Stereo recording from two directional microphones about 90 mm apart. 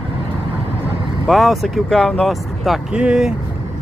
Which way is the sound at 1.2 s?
Centre (ahead or behind).